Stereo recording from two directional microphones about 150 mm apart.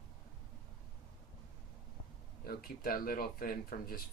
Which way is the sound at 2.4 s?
80° left.